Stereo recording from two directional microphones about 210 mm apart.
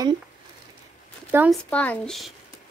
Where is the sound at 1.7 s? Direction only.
5° left (ahead or behind).